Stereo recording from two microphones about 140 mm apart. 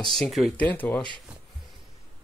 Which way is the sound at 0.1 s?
Centre (ahead or behind).